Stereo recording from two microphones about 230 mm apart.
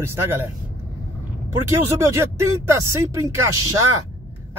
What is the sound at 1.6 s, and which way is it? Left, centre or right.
Speech, centre.